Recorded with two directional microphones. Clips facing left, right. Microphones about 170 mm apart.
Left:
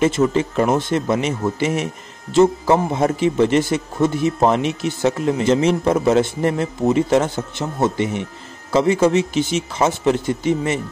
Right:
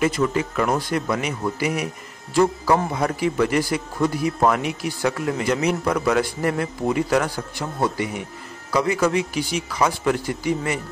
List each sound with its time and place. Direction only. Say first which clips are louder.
0.0 s speech: left 4 dB; 25° left (ahead or behind)